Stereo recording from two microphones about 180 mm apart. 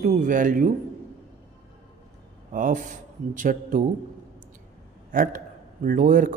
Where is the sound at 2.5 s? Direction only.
45° right (ahead or behind).